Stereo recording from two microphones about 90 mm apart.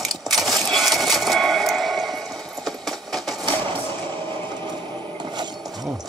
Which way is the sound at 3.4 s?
70° right (ahead or behind).